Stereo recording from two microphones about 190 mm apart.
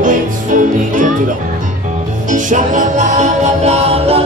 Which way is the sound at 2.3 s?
40° right (ahead or behind).